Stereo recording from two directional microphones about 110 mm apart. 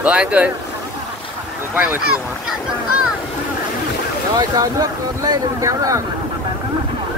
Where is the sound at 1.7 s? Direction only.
20° right (ahead or behind).